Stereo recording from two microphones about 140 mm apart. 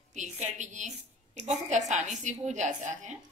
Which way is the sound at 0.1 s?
60° right (ahead or behind).